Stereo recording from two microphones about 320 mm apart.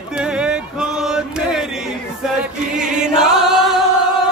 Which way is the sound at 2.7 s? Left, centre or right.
Centre.